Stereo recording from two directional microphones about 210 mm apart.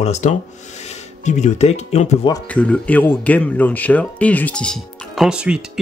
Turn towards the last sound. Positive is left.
turn(degrees=-5)  # may be behind; listen again after turning